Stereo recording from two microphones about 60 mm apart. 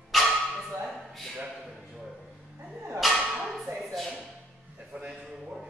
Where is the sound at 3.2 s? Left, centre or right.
Centre.